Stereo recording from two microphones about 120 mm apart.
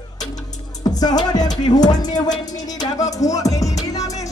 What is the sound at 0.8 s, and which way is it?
Speech, 35° left (ahead or behind).